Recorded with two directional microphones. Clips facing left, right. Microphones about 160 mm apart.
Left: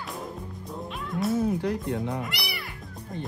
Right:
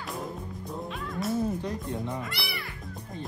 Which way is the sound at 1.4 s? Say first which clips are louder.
Left 4 dB; 70° left (ahead or behind).